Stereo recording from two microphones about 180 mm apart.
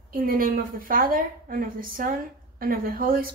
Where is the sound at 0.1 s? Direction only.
50° right (ahead or behind).